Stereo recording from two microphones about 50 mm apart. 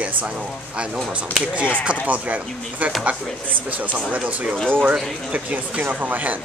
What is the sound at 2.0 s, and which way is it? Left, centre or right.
Speech, right.